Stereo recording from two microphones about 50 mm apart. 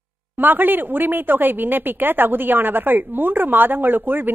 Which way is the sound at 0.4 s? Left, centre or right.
Right.